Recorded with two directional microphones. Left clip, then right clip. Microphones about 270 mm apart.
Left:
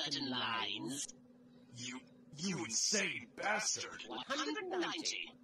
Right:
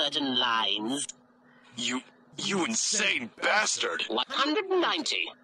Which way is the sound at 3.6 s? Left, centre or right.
Right.